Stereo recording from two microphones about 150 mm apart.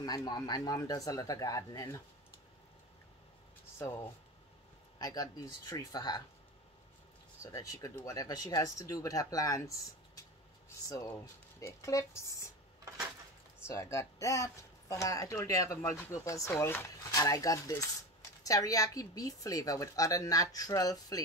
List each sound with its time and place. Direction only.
0.0 s a woman's voice: 25° left (ahead or behind)
3.7 s a woman's voice: 20° left (ahead or behind)
7.5 s a woman's voice: 25° left (ahead or behind)
11.6 s a woman's voice: 20° left (ahead or behind)
13.7 s a woman's voice: 20° left (ahead or behind)